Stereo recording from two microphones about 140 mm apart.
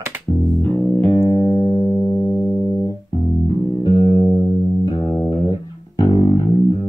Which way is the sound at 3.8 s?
35° left (ahead or behind).